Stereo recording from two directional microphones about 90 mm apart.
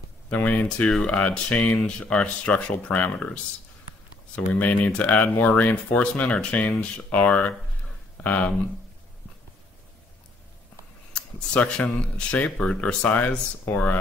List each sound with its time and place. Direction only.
0.3 s speech: 20° left (ahead or behind)
4.6 s speech: 15° left (ahead or behind)
11.1 s speech: 10° left (ahead or behind)